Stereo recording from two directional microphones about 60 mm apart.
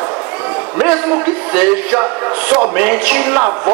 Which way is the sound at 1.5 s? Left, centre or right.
Centre.